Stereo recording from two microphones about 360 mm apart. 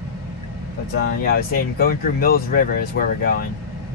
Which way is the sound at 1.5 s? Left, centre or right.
Left.